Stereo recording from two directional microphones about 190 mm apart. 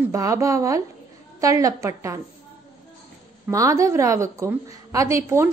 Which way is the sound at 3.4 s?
15° right (ahead or behind).